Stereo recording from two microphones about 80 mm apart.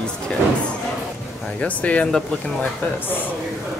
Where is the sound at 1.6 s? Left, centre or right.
Centre.